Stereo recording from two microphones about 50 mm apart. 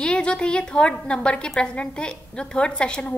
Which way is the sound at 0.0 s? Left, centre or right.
Centre.